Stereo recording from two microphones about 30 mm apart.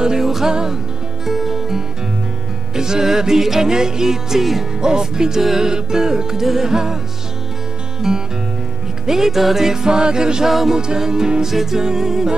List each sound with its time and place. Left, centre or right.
0.2 s music: centre
0.5 s music: right
1.2 s music: centre
2.7 s music: right
4.7 s music: right
8.0 s music: centre
9.4 s music: centre
9.7 s music: right
11.4 s music: centre